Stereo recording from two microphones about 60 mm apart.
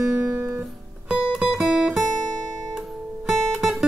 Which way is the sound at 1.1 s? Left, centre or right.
Centre.